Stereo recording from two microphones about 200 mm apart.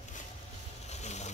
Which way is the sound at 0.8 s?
35° left (ahead or behind).